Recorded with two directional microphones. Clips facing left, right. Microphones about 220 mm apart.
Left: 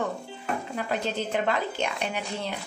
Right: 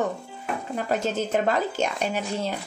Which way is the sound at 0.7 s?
45° right (ahead or behind).